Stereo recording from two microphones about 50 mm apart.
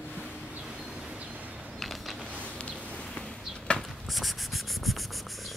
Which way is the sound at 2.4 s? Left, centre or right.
Left.